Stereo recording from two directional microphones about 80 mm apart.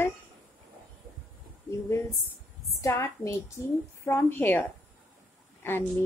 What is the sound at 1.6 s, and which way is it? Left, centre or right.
A woman's voice, left.